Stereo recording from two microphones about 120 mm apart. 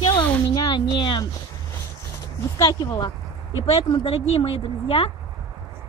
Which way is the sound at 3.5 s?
55° left (ahead or behind).